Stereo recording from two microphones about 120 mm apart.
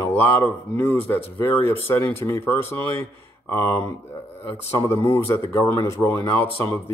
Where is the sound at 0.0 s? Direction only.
20° left (ahead or behind).